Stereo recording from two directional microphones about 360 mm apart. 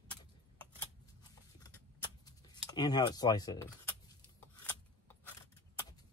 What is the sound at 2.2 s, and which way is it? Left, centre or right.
Speech, centre.